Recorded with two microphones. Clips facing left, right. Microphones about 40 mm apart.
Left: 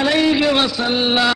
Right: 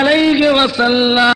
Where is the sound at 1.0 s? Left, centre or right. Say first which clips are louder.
Right 3 dB; centre.